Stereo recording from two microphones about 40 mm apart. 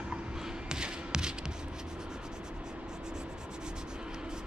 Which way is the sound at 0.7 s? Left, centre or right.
Centre.